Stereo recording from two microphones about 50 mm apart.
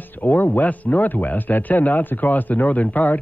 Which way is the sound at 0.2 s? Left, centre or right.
Left.